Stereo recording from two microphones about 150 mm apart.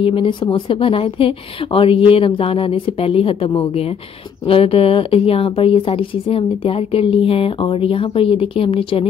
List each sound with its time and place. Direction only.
0.0 s a woman's voice: 35° left (ahead or behind)